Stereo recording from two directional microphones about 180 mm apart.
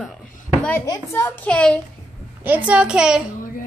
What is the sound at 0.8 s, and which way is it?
Speech, 15° left (ahead or behind).